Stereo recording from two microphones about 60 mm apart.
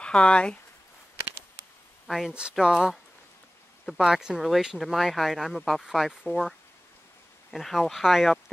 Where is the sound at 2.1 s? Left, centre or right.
Centre.